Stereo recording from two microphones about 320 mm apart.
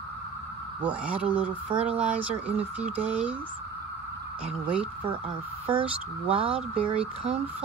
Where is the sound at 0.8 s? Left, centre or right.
Centre.